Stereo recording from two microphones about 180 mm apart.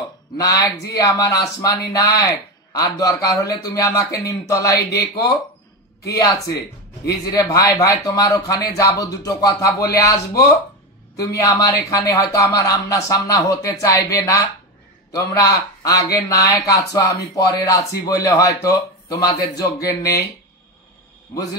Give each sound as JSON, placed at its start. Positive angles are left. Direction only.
{"t": 0.4, "sound": "speech", "side_deg": 20}